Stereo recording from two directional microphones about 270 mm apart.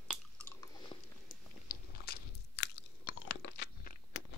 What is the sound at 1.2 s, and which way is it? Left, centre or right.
Biting, left.